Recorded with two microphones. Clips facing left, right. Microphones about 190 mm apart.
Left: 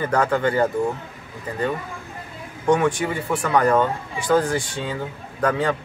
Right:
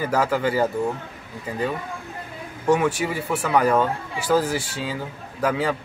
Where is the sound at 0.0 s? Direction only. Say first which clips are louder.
Left 1 dB; 5° right (ahead or behind).